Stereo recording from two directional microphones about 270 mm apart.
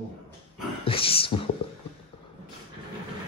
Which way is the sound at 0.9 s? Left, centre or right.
Left.